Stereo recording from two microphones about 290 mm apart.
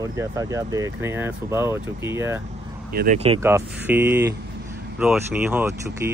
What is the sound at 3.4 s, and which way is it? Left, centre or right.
Speech, centre.